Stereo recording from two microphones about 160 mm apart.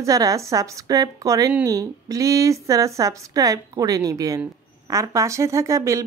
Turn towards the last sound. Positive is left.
turn(degrees=-20)  # may be behind; listen again after turning